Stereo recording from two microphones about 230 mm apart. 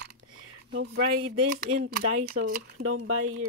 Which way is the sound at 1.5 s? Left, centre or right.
Right.